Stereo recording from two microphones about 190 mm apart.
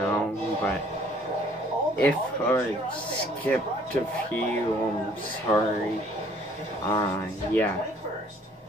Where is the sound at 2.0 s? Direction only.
10° left (ahead or behind).